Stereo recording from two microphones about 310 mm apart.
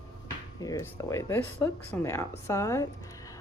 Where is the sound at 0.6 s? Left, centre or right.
Centre.